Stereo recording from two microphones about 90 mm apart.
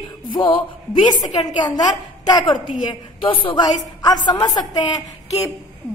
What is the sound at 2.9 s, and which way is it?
Speech, 70° left (ahead or behind).